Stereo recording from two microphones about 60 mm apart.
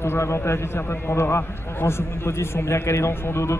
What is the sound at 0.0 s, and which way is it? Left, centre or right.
A man's voice, left.